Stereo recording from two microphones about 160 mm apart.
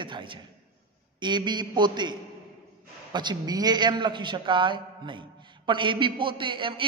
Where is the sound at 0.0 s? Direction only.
30° right (ahead or behind).